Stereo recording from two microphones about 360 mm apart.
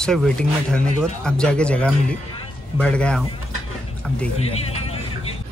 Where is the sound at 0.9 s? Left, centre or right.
Centre.